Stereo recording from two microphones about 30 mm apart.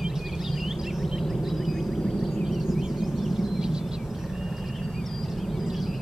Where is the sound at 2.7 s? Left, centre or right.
Centre.